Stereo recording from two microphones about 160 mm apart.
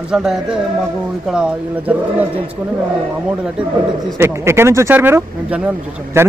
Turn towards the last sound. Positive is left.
turn(degrees=-10)  # may be behind; listen again after turning